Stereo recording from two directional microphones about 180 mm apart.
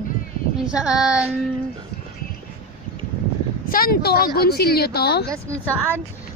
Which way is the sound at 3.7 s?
55° left (ahead or behind).